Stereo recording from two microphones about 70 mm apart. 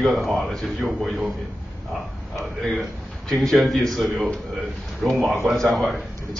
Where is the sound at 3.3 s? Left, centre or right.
Centre.